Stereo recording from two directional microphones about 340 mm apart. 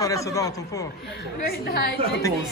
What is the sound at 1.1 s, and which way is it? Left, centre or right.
Speech, left.